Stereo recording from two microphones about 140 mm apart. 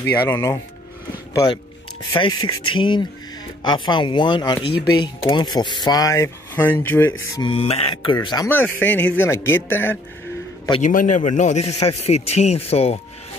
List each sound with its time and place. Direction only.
0.0 s a man's voice: 15° left (ahead or behind)
1.3 s speech: 30° left (ahead or behind)
7.3 s speech: 40° left (ahead or behind)
8.5 s a man's voice: 15° left (ahead or behind)
10.8 s a man's voice: 70° left (ahead or behind); by 13.0 s 45° left (ahead or behind)